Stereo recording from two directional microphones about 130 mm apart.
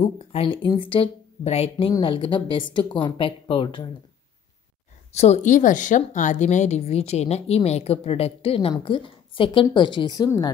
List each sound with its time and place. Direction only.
0.0 s speech: 45° left (ahead or behind)
1.9 s a woman's voice: 40° left (ahead or behind)
5.1 s a woman's voice: 60° left (ahead or behind); by 10.5 s 30° left (ahead or behind)